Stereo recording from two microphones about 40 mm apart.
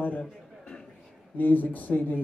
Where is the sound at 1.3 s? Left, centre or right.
Left.